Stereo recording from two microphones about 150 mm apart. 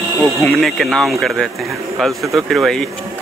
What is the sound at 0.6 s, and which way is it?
A man's voice, centre (ahead or behind).